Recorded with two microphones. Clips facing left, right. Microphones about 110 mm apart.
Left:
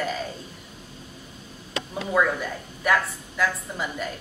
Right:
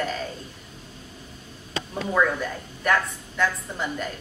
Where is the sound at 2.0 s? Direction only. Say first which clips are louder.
Even; 5° left (ahead or behind).